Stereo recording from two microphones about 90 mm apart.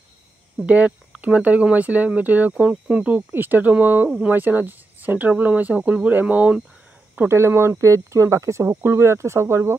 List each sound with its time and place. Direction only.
0.6 s speech: 15° right (ahead or behind)
7.2 s speech: 30° right (ahead or behind)